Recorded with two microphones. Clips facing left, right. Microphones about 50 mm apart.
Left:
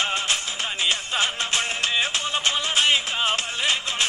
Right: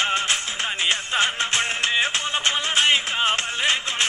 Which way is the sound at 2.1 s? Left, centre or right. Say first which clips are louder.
Right 1 dB; right.